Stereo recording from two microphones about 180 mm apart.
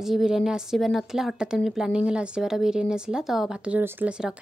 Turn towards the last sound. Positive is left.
turn(degrees=-10)  # may be behind; listen again after turning